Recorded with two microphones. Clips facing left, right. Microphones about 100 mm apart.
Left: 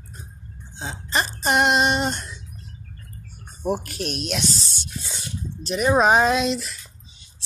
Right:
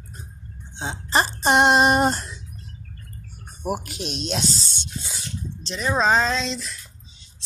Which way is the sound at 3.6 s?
15° right (ahead or behind).